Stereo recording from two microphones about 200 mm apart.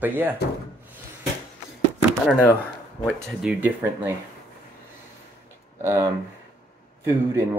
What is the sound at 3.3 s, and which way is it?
Speech, 5° right (ahead or behind).